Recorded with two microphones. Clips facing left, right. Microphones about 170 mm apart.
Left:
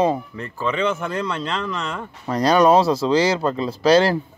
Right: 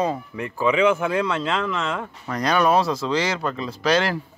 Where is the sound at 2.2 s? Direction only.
35° left (ahead or behind).